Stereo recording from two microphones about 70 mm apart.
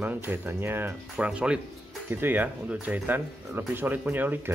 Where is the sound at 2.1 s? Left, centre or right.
Right.